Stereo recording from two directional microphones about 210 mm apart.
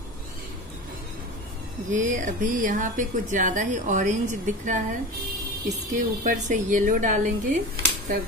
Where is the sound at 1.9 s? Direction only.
35° right (ahead or behind).